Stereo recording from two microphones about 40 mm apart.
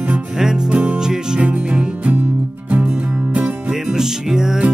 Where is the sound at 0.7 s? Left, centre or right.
Right.